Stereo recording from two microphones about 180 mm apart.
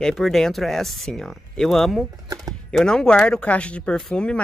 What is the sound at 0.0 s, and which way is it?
Speech, centre (ahead or behind).